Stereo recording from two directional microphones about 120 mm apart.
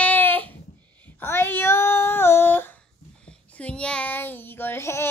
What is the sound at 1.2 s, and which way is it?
Child singing, 20° left (ahead or behind).